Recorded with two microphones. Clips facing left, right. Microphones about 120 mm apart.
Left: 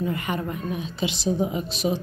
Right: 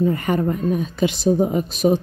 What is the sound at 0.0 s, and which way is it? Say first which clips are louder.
A woman's voice: right 8 dB; 40° right (ahead or behind).